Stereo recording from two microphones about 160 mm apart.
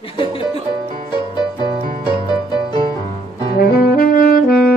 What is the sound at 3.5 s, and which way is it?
Saxophone, 70° left (ahead or behind).